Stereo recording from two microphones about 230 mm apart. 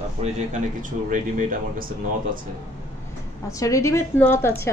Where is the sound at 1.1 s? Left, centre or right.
Right.